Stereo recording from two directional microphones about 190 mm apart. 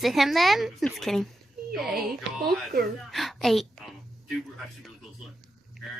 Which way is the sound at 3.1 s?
Centre (ahead or behind).